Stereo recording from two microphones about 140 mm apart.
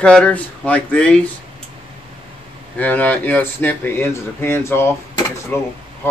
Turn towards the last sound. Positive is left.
turn(degrees=15)  # may be behind; listen again after turning